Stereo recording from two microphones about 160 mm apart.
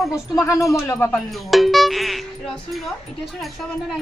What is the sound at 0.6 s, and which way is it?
Speech, 20° left (ahead or behind).